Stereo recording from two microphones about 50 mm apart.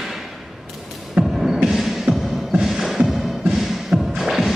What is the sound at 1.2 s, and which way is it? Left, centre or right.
Hum, centre.